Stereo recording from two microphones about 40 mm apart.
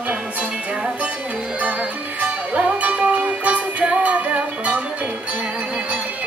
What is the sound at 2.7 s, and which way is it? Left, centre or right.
Music, right.